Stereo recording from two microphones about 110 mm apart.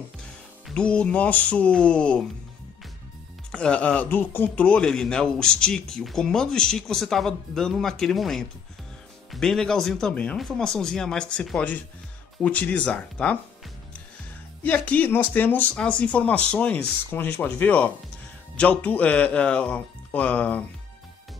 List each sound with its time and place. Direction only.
0.7 s speech: 10° left (ahead or behind)
3.5 s speech: 10° left (ahead or behind)
14.6 s speech: 15° left (ahead or behind)